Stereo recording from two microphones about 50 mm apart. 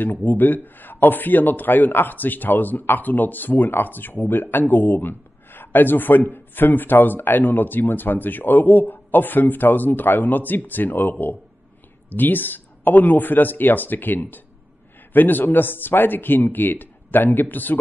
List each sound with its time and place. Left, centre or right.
0.0 s a man's voice: left